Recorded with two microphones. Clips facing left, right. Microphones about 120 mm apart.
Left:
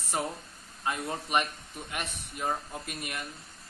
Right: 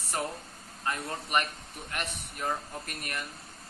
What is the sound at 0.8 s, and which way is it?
Speech, 10° left (ahead or behind).